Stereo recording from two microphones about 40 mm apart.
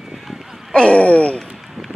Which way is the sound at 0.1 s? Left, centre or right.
Centre.